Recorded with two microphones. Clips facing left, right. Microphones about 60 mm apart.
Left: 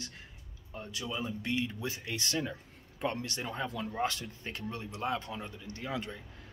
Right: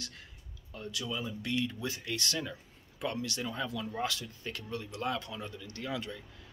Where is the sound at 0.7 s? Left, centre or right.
Left.